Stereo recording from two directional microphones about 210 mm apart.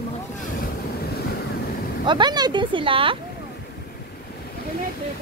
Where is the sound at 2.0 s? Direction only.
20° right (ahead or behind).